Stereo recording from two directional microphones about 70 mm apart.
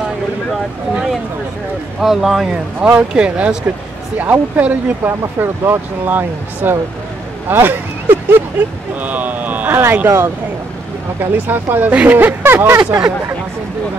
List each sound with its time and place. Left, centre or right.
2.0 s speech: centre
2.5 s speech: centre; by 12.8 s right